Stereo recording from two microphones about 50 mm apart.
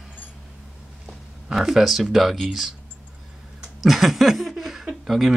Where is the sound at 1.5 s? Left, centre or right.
Centre.